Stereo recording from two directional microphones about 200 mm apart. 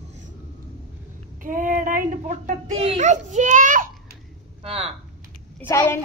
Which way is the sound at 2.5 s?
35° right (ahead or behind).